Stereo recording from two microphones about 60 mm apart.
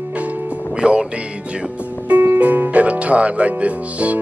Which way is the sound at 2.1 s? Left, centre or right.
Right.